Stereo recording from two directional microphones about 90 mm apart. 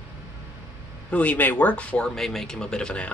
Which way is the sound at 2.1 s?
5° left (ahead or behind).